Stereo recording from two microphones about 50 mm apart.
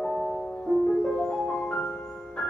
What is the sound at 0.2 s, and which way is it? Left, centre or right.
Music, centre.